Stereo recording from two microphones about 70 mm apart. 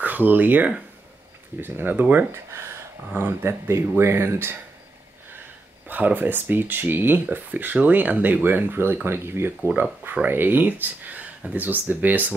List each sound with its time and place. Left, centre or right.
0.0 s speech: right
2.3 s speech: right
5.9 s speech: right
10.1 s speech: right